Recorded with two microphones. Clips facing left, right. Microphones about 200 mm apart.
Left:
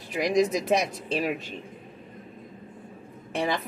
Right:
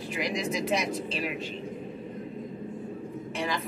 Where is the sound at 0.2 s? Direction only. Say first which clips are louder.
Left 7 dB; 45° left (ahead or behind).